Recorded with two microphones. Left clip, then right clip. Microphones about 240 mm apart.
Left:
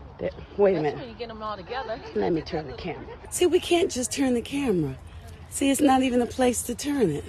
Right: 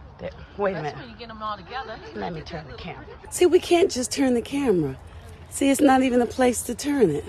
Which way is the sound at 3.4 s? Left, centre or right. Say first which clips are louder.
Right 3 dB; right.